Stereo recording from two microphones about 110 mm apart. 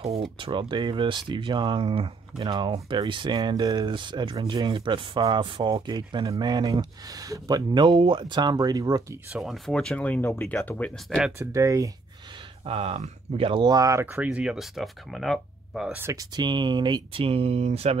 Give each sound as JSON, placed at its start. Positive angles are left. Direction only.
{"t": 0.0, "sound": "speech", "side_deg": -65}
{"t": 9.3, "sound": "speech", "side_deg": 0}
{"t": 11.1, "sound": "speech", "side_deg": -5}
{"t": 11.3, "sound": "speech", "side_deg": -30}
{"t": 12.6, "sound": "speech", "side_deg": -65}
{"t": 13.7, "sound": "speech", "side_deg": -30}
{"t": 14.0, "sound": "speech", "side_deg": -15}
{"t": 16.0, "sound": "speech", "side_deg": -25}
{"t": 16.3, "sound": "speech", "side_deg": -45}